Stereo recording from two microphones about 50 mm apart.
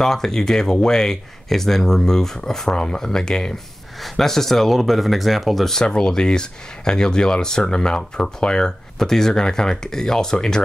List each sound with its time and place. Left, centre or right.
0.0 s speech: centre